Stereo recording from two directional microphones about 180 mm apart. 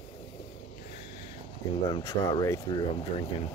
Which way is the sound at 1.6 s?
20° left (ahead or behind).